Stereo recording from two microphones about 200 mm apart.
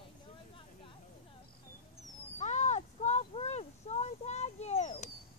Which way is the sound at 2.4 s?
35° left (ahead or behind).